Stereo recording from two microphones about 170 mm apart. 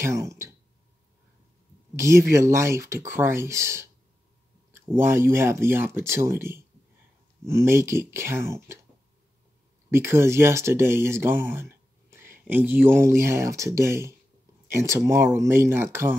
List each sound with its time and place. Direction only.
0.0 s speech: 15° right (ahead or behind)
2.0 s speech: 15° right (ahead or behind)
9.8 s speech: 15° right (ahead or behind)